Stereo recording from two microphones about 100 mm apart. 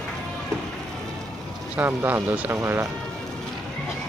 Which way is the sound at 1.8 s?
20° right (ahead or behind).